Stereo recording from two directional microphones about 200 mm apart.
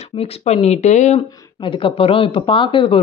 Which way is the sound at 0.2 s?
30° left (ahead or behind).